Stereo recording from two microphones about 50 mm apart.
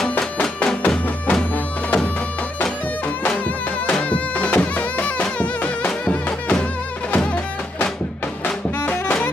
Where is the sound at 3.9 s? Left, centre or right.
Left.